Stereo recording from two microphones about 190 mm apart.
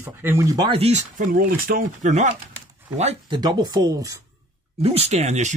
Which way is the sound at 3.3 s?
20° right (ahead or behind).